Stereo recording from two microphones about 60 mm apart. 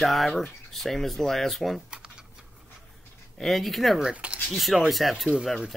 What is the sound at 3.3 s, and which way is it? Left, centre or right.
Speech, centre.